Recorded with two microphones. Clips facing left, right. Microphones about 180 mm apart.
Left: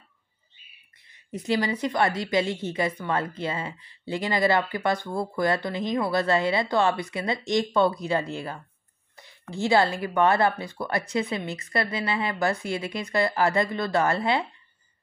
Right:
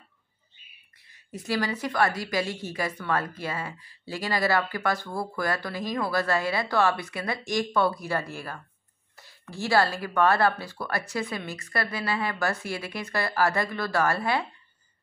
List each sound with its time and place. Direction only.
1.4 s a woman's voice: 20° left (ahead or behind)